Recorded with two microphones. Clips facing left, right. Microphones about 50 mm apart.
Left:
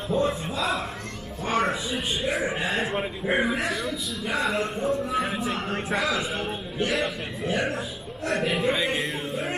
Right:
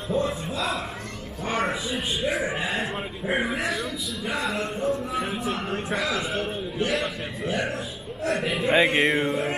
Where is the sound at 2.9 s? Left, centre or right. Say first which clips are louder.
Left 2 dB; centre.